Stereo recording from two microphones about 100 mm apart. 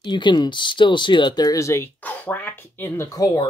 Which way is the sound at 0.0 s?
50° left (ahead or behind).